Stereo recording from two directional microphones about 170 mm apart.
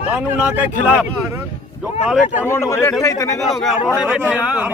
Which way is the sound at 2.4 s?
15° left (ahead or behind).